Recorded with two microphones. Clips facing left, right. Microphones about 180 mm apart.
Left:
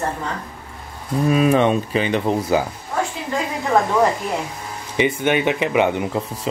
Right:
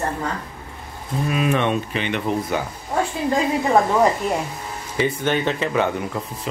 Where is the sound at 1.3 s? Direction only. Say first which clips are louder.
Left 5 dB; 35° left (ahead or behind).